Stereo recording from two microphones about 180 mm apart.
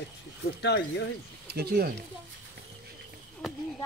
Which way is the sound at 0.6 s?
75° left (ahead or behind).